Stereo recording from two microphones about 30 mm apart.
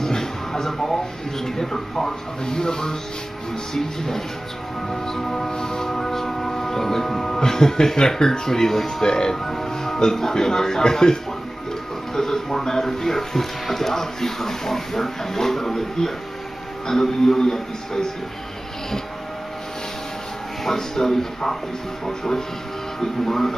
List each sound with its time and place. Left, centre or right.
0.0 s a sound: centre
1.4 s speech: centre
9.0 s speech: left
20.6 s speech: centre